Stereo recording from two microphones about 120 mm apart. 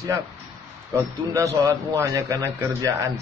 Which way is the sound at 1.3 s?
25° right (ahead or behind).